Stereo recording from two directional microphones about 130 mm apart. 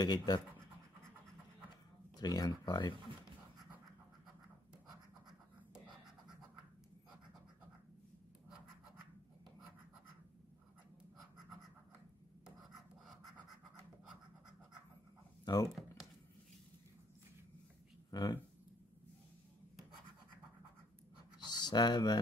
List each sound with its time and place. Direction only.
0.0 s speech: 30° left (ahead or behind)
2.1 s speech: 30° left (ahead or behind)
15.4 s speech: 30° left (ahead or behind)
18.1 s speech: 30° left (ahead or behind)
21.5 s speech: 30° left (ahead or behind)